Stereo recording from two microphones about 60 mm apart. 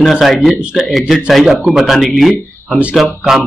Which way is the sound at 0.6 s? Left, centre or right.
Centre.